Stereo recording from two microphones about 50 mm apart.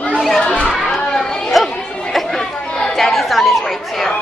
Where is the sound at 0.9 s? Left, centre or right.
Centre.